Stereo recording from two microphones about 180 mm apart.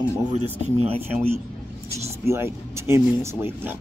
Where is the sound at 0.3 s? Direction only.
35° right (ahead or behind).